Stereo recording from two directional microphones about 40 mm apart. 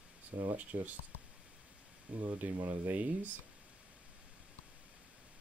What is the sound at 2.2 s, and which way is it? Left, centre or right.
Speech, right.